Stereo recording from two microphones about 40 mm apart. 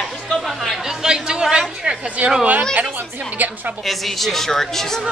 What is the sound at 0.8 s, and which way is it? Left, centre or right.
Chatter, centre.